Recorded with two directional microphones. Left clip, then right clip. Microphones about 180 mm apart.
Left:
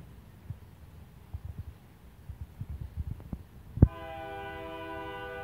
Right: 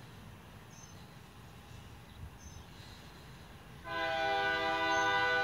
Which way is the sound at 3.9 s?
20° right (ahead or behind).